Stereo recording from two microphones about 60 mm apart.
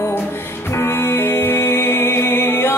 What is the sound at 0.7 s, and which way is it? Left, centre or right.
Music, left.